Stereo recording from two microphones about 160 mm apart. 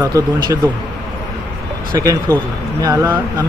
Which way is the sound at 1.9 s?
20° right (ahead or behind).